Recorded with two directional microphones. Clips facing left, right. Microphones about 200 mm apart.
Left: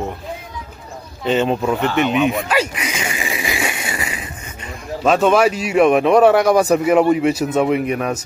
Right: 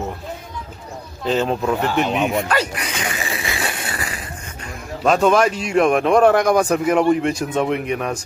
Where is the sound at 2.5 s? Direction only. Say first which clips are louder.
Left 2 dB; 5° left (ahead or behind).